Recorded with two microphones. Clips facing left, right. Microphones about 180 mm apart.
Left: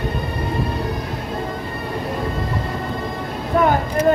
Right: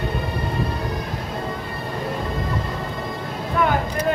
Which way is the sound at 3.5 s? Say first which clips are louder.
Left 4 dB; 40° left (ahead or behind).